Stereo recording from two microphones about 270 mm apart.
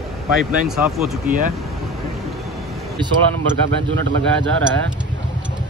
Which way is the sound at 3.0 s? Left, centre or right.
Centre.